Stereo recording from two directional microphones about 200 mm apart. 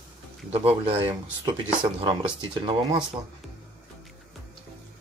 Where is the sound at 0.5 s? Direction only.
30° right (ahead or behind).